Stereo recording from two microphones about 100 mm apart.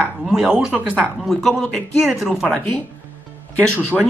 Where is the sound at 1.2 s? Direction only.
Centre (ahead or behind).